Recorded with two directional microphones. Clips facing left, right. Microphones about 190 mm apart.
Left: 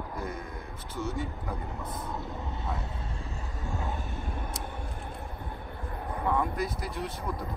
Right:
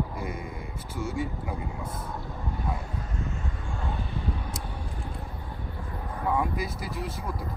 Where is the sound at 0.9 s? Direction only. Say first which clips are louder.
Right 2 dB; 10° right (ahead or behind).